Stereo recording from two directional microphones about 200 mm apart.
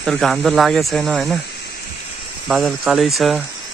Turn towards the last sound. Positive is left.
turn(degrees=0)  # may be behind; listen again after turning